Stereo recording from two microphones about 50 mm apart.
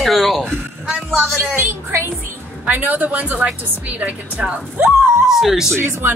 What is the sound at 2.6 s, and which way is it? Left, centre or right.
A woman's voice, right.